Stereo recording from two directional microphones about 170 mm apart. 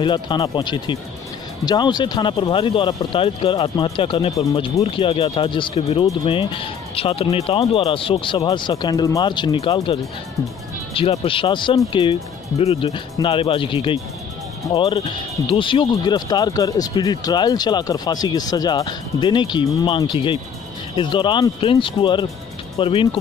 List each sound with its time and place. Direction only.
0.0 s speech: 25° left (ahead or behind)
11.0 s speech: 30° left (ahead or behind)